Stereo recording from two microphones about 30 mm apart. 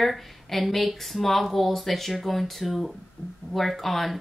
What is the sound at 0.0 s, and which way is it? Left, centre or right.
Speech, centre.